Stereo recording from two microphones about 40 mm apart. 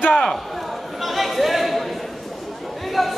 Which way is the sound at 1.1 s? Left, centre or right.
Centre.